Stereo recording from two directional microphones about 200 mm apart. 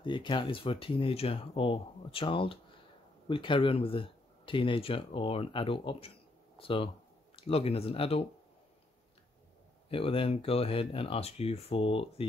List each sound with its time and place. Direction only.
0.0 s speech: 25° left (ahead or behind)
9.8 s speech: 30° left (ahead or behind)